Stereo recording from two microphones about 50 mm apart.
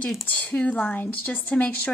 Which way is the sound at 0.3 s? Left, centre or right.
Left.